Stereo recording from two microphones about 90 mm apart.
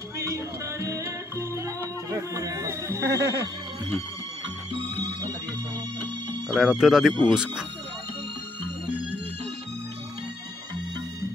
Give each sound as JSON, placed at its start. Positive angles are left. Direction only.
{"t": 0.2, "sound": "music", "side_deg": -35}
{"t": 6.5, "sound": "speech", "side_deg": -5}